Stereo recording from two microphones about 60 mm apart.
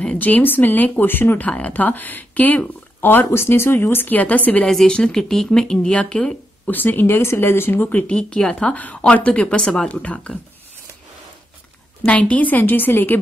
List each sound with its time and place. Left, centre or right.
0.0 s speech: left
4.6 s a woman's voice: centre
6.7 s speech: left
8.1 s a woman's voice: centre
12.1 s speech: left